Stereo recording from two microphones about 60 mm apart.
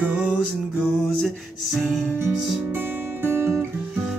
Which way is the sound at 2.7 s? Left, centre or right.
Right.